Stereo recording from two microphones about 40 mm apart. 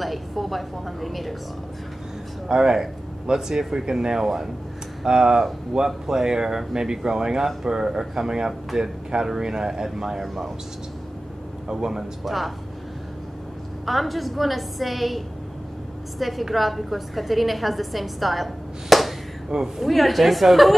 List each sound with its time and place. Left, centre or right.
0.0 s a woman's voice: centre
2.4 s a woman's voice: centre
11.7 s speech: centre
12.3 s a woman's voice: centre
13.8 s a woman's voice: centre